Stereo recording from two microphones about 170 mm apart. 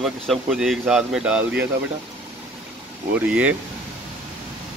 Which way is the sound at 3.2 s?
10° right (ahead or behind).